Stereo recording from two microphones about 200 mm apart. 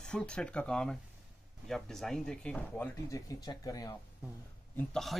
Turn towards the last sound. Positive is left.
turn(degrees=0)  # may be behind; listen again after turning